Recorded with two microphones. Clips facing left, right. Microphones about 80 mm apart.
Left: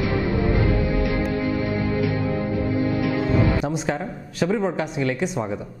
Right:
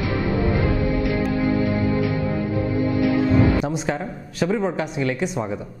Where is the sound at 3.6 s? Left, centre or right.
Right.